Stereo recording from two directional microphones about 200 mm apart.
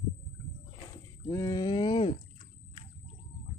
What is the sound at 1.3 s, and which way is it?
Speech, 15° left (ahead or behind).